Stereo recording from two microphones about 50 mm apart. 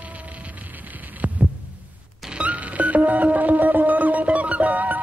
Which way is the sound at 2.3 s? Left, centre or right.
Right.